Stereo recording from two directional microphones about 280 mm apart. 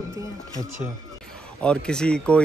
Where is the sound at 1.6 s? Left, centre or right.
Centre.